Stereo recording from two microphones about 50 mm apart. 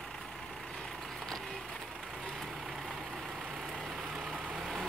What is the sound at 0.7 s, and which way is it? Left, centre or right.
Vehicle, centre.